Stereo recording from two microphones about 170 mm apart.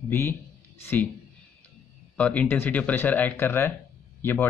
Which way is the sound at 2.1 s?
10° left (ahead or behind).